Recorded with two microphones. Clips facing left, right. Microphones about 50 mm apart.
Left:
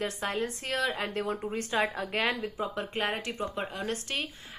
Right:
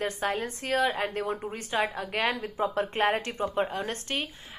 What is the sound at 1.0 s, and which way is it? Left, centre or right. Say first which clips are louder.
Speech: right 2 dB; centre.